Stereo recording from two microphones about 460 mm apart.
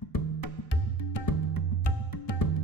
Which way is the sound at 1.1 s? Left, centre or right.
Left.